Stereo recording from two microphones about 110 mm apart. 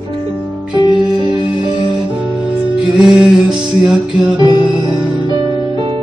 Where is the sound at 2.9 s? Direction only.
5° right (ahead or behind).